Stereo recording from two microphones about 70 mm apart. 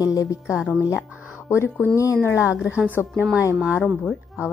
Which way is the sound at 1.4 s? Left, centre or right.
Left.